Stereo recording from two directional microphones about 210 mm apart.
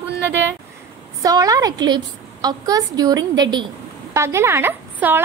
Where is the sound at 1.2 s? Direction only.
15° right (ahead or behind).